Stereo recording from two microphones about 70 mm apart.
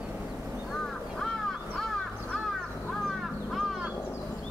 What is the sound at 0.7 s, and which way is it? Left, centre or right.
Crow, centre.